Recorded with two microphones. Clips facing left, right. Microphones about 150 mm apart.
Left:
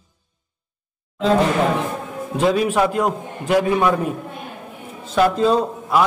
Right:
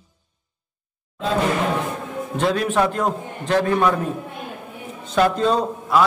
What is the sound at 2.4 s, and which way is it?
A man's voice, 5° left (ahead or behind).